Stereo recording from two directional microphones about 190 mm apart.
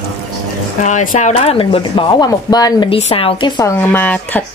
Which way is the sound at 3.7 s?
10° left (ahead or behind).